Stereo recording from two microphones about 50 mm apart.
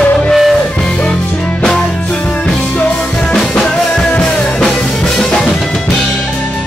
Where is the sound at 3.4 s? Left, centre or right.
Centre.